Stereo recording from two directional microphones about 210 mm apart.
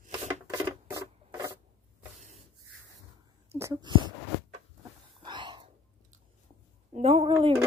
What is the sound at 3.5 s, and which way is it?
Speech, 15° right (ahead or behind).